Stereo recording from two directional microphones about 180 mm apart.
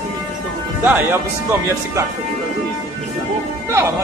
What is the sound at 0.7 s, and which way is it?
Speech, 10° right (ahead or behind).